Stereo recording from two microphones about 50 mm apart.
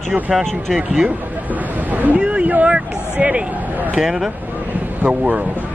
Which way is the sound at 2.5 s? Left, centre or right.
Right.